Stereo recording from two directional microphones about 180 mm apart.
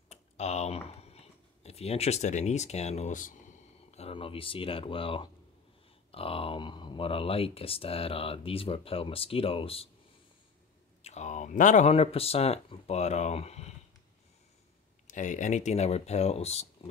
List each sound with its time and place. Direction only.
0.1 s speech: 40° left (ahead or behind)
11.0 s speech: 40° left (ahead or behind)
15.0 s speech: 45° left (ahead or behind)